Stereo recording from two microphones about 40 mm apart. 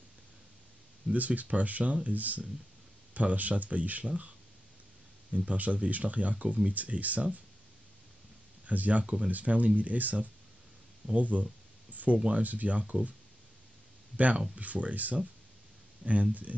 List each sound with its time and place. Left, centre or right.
1.1 s speech: right
5.3 s speech: right
8.6 s speech: right
9.0 s speech: right
9.3 s speech: right
11.9 s a sound: right
12.3 s speech: right
14.1 s speech: right